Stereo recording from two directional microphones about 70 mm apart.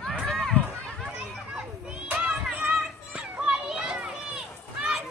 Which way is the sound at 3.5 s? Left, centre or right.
Centre.